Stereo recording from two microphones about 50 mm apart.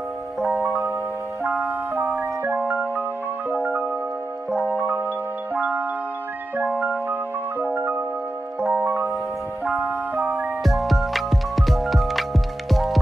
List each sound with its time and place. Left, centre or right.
0.4 s music: centre
1.5 s music: right
3.5 s music: right
4.6 s music: right
8.7 s music: right
10.2 s music: right
10.6 s music: centre